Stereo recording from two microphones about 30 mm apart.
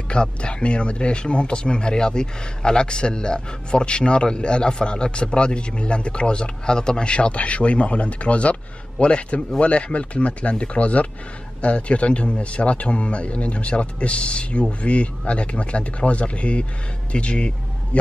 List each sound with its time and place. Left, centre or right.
0.1 s a man's voice: left